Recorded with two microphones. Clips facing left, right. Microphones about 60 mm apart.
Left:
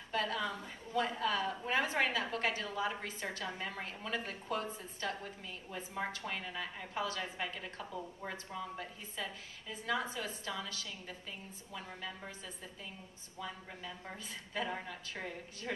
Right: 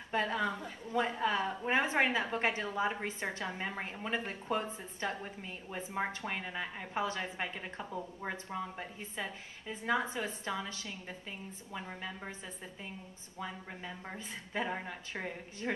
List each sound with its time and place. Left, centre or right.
0.1 s a woman's voice: right
13.4 s a woman's voice: right